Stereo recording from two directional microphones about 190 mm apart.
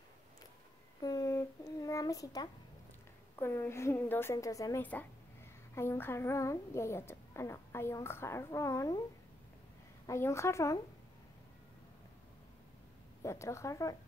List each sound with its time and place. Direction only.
1.0 s a child's voice: 20° left (ahead or behind)
10.0 s a woman's voice: 15° left (ahead or behind)
13.2 s a woman's voice: 15° left (ahead or behind)